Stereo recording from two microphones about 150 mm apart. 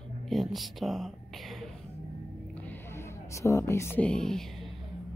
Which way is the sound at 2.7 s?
15° left (ahead or behind).